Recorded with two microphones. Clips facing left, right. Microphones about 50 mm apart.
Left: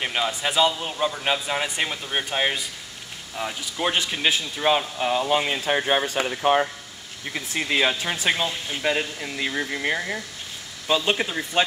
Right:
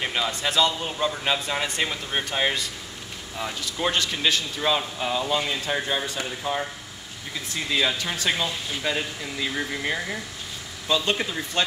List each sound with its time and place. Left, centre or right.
0.0 s speech: centre
5.3 s speech: left
7.6 s speech: left
9.5 s speech: centre